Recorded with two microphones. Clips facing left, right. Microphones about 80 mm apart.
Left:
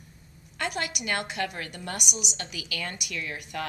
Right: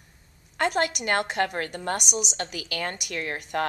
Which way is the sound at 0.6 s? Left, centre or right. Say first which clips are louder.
Right 7 dB; right.